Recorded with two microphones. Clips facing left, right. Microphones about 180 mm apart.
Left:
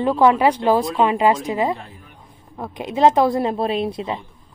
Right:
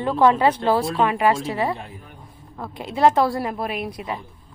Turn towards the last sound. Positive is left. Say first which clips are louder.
# left 6 dB
turn(degrees=25)  # may be behind; listen again after turning